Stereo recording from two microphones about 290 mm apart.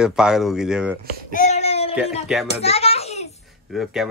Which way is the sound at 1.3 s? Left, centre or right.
Left.